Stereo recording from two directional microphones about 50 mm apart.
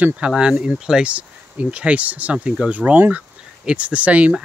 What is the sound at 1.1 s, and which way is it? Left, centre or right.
Speech, right.